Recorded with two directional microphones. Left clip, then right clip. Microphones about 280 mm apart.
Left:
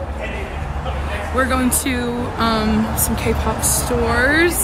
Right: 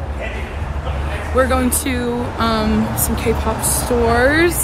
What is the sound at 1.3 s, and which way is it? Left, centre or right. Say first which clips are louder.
Speech: right 3 dB; centre.